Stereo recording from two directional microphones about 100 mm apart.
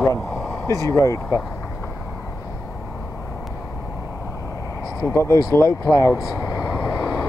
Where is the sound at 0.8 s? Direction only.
35° left (ahead or behind).